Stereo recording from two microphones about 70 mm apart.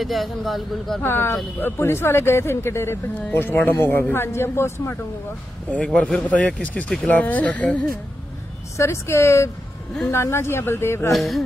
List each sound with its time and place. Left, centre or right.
0.0 s a man's voice: centre
1.0 s speech: left
3.3 s speech: left
6.2 s speech: centre
8.7 s a woman's voice: left
11.1 s a man's voice: centre